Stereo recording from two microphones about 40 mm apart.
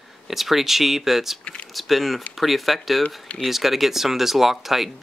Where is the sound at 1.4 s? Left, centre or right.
Left.